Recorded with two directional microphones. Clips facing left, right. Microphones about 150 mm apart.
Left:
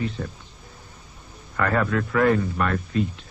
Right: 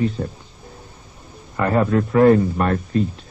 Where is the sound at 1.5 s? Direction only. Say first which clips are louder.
Right 5 dB; 25° right (ahead or behind).